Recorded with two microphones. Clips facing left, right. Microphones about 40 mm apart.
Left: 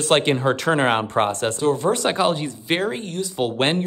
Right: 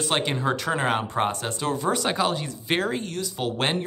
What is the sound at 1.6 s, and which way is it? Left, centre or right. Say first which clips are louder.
Speech: left 6 dB; centre.